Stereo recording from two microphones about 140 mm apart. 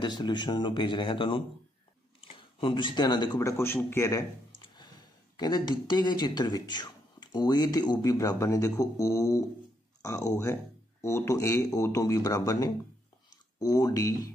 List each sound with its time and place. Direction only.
0.0 s a man's voice: 30° left (ahead or behind)
4.6 s speech: 30° left (ahead or behind)